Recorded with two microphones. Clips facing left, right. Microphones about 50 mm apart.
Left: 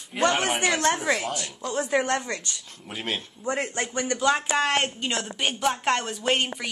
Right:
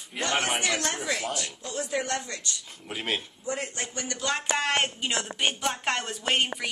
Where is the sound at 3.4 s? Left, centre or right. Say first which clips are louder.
Left 5 dB; left.